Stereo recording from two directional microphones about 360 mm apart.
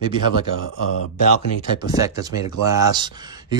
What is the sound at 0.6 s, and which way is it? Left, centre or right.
Speech, left.